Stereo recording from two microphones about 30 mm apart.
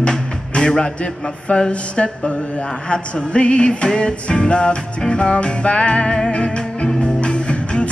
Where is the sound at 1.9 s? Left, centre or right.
Left.